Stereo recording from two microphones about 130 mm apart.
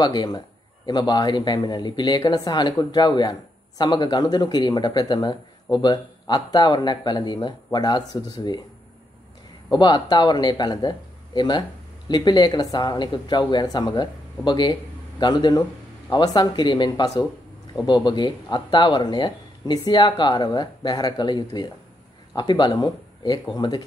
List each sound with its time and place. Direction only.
0.0 s speech: 30° left (ahead or behind)
9.7 s speech: 35° left (ahead or behind)